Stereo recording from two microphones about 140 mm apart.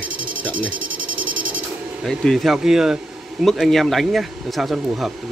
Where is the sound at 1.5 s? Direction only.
Centre (ahead or behind).